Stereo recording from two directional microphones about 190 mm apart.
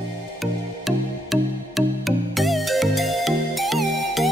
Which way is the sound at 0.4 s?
Centre (ahead or behind).